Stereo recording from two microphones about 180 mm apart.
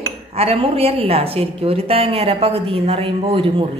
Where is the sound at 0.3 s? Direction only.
35° right (ahead or behind).